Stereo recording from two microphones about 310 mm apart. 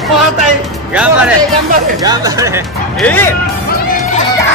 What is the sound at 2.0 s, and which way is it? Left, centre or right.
Speech, centre.